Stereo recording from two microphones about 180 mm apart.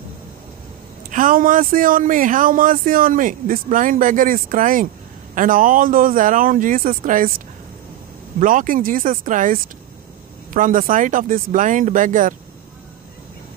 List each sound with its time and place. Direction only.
1.1 s speech: 50° right (ahead or behind)
8.4 s speech: 50° right (ahead or behind)